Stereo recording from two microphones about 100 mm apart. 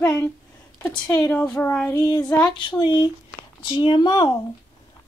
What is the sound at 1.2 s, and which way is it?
Speech, 10° left (ahead or behind).